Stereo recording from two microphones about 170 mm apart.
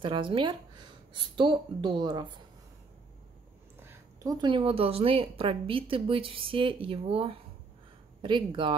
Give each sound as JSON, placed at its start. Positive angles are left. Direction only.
{"t": 0.0, "sound": "speech", "side_deg": -30}
{"t": 3.8, "sound": "a woman's voice", "side_deg": -20}